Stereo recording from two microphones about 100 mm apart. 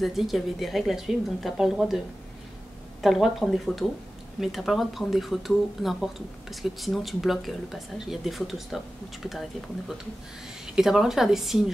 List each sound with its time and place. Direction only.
0.0 s speech: centre (ahead or behind)
3.0 s speech: centre (ahead or behind)